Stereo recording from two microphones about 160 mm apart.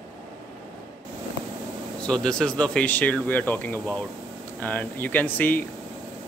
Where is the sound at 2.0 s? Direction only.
5° left (ahead or behind).